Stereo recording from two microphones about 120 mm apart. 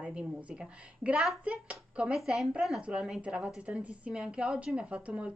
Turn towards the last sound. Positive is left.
turn(degrees=-10)  # may be behind; listen again after turning